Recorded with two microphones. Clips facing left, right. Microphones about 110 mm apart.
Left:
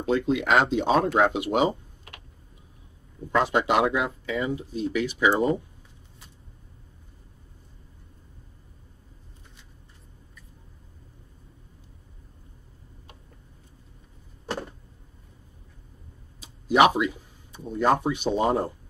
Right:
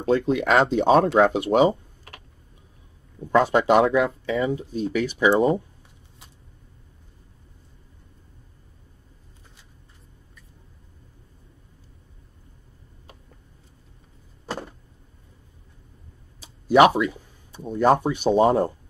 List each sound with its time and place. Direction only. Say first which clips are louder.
0.0 s speech: right 3 dB; 40° right (ahead or behind)
3.4 s speech: right 4 dB; 45° right (ahead or behind)
4.3 s speech: right 4 dB; 35° right (ahead or behind)
16.6 s speech: right 3 dB; 35° right (ahead or behind)